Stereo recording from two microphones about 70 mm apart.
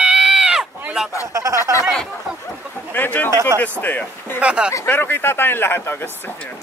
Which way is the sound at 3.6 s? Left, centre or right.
Left.